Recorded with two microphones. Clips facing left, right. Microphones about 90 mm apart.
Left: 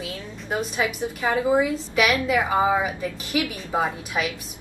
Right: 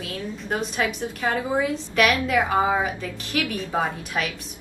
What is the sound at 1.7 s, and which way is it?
Speech, 5° left (ahead or behind).